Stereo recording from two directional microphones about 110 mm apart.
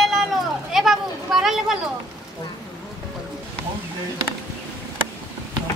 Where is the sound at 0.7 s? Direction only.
Centre (ahead or behind).